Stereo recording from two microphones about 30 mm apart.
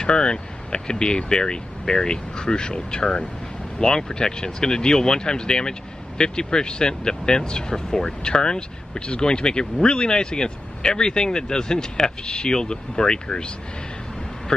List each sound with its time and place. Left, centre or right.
0.0 s speech: left